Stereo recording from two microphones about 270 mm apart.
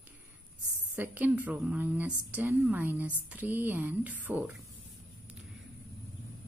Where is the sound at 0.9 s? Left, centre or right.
Centre.